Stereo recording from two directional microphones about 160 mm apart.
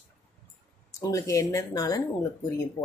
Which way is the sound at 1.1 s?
20° left (ahead or behind).